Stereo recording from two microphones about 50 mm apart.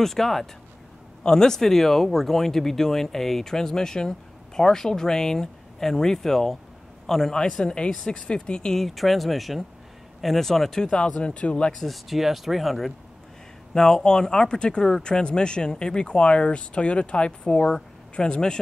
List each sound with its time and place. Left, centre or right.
0.0 s speech: centre
7.6 s speech: centre
8.7 s speech: centre; by 11.7 s left
11.8 s speech: centre
13.7 s speech: centre